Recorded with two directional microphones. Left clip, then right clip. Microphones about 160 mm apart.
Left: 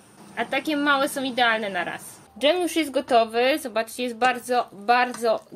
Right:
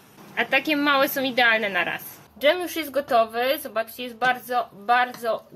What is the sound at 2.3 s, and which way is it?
A woman's voice, 15° left (ahead or behind).